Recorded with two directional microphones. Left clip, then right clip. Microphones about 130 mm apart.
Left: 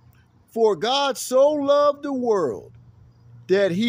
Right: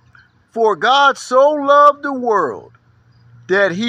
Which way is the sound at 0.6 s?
40° left (ahead or behind).